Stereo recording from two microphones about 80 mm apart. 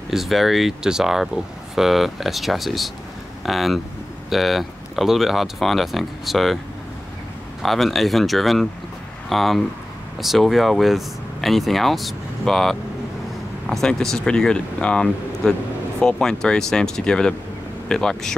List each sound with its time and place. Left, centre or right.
0.1 s speech: centre
7.6 s speech: centre